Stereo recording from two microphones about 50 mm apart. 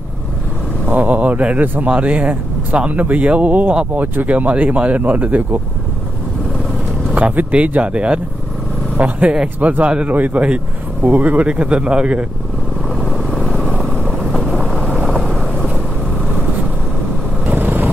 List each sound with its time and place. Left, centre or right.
0.8 s speech: right
7.2 s speech: right
12.9 s vehicle: centre
13.7 s vehicle: centre
14.3 s vehicle: centre
15.2 s vehicle: centre
17.5 s vehicle: right